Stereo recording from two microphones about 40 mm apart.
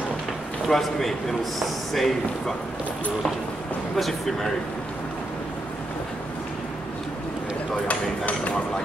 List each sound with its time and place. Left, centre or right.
0.7 s a man's voice: centre
3.9 s speech: centre
7.9 s a sound: left